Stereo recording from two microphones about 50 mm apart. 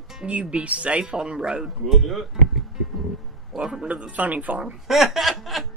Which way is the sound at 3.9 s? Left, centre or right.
Right.